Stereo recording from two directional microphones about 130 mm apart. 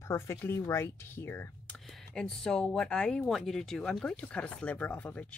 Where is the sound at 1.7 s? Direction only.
5° left (ahead or behind).